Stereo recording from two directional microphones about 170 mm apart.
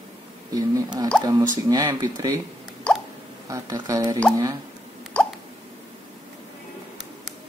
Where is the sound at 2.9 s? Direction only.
5° left (ahead or behind).